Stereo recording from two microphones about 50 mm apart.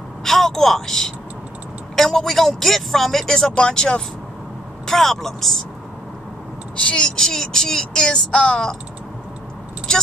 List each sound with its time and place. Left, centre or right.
0.2 s a sound: centre
2.0 s speech: centre
4.8 s speech: centre
6.8 s speech: centre